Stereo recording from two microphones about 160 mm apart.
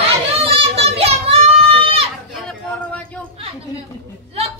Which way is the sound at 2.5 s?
5° left (ahead or behind).